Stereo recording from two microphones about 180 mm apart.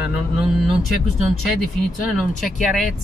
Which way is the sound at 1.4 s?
Centre (ahead or behind).